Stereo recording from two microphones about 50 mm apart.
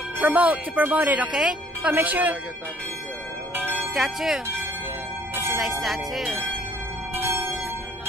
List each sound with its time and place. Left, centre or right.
0.2 s a woman's voice: right
3.5 s bell: right
3.9 s speech: centre
5.6 s speech: centre
7.2 s bell: right